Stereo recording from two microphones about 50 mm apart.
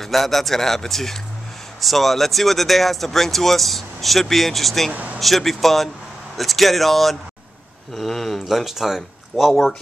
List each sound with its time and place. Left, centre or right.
0.0 s speech: centre
4.9 s speech: right
5.2 s speech: centre
9.5 s speech: centre